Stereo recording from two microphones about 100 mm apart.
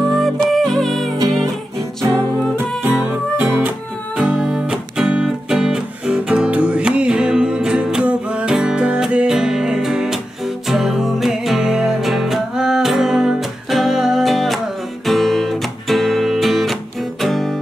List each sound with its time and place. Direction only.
0.1 s music: centre (ahead or behind)
3.1 s music: 20° right (ahead or behind); by 17.6 s centre (ahead or behind)